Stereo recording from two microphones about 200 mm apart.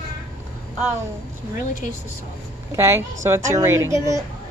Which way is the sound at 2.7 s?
15° right (ahead or behind).